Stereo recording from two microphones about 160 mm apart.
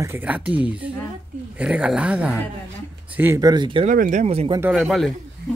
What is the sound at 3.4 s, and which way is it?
Speech, 25° right (ahead or behind).